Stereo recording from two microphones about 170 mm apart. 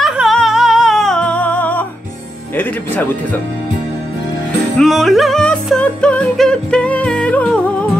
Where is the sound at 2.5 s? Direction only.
10° left (ahead or behind).